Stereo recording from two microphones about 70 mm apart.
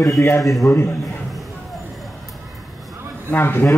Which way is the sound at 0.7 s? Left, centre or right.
Left.